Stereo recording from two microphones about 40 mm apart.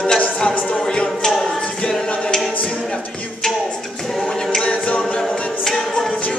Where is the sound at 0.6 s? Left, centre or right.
Left.